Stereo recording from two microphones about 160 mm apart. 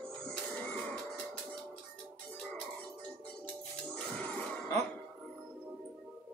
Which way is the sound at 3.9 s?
5° left (ahead or behind).